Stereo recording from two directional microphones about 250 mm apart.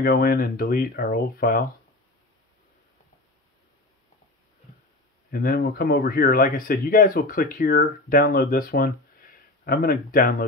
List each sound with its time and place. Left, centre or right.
0.0 s speech: left
5.3 s speech: left